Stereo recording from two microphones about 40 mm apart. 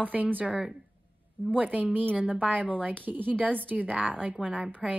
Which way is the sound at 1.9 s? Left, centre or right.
Right.